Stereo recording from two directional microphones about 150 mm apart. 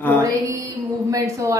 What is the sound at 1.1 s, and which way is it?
Speech, 20° right (ahead or behind).